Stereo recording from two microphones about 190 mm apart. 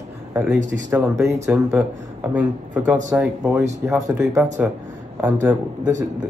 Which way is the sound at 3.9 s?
15° right (ahead or behind).